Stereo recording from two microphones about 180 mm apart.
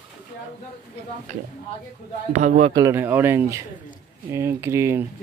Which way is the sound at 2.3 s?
40° right (ahead or behind).